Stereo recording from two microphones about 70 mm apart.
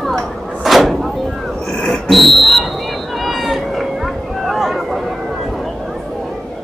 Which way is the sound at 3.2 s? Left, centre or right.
Centre.